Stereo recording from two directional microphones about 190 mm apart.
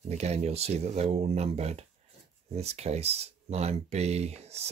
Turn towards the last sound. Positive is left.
turn(degrees=-35)  # may be behind; listen again after turning